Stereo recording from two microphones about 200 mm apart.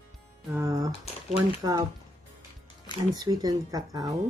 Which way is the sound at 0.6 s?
15° right (ahead or behind).